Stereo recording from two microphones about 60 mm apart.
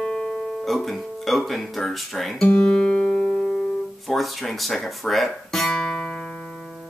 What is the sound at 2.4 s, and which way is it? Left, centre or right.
Guitar, centre.